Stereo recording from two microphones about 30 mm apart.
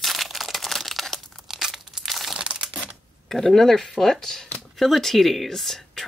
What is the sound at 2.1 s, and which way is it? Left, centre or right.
Crumpling, centre.